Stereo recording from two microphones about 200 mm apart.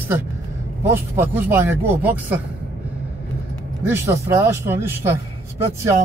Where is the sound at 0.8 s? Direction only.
10° right (ahead or behind).